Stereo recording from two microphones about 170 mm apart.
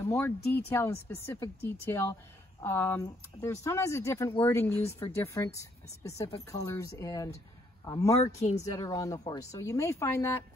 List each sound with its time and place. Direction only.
0.0 s speech: 10° left (ahead or behind)